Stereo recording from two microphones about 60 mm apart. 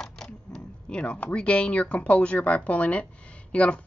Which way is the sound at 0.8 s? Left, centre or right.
Centre.